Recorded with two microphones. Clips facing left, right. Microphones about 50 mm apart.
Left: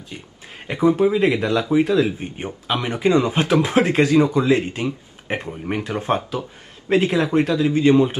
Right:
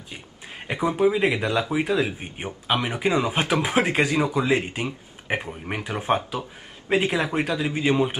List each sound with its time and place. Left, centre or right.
0.7 s speech: centre